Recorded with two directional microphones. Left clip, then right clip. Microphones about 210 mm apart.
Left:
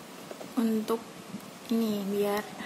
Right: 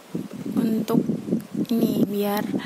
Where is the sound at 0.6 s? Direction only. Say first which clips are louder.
Right 5 dB; 35° right (ahead or behind).